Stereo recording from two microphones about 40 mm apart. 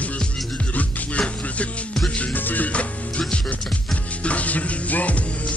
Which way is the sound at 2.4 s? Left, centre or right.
Left.